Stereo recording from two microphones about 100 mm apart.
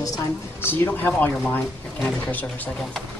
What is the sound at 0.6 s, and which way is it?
Speech, 20° left (ahead or behind).